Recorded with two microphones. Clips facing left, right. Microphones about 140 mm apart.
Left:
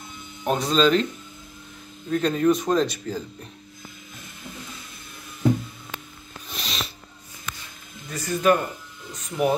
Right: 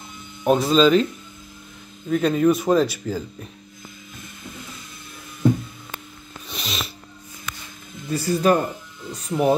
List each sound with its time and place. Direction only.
0.4 s speech: 5° right (ahead or behind)
2.0 s speech: 5° right (ahead or behind)
6.5 s music: centre (ahead or behind)
8.1 s speech: 35° right (ahead or behind)